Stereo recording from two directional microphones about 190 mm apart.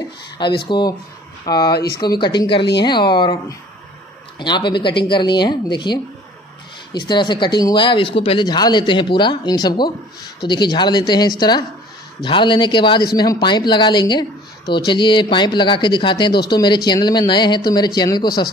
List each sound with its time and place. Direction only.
0.7 s speech: 25° left (ahead or behind)